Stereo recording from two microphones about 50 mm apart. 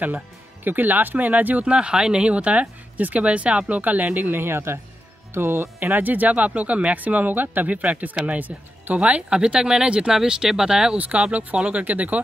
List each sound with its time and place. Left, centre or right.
0.7 s speech: right; by 11.0 s centre
11.0 s speech: right